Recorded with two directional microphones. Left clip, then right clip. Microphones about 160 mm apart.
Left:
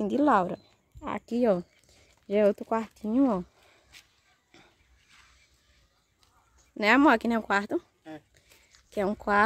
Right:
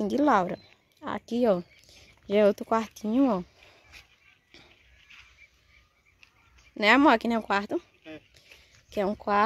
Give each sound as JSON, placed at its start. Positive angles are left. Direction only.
{"t": 0.0, "sound": "a sound", "side_deg": 5}
{"t": 2.3, "sound": "speech", "side_deg": -5}
{"t": 6.7, "sound": "speech", "side_deg": 0}
{"t": 8.9, "sound": "speech", "side_deg": 15}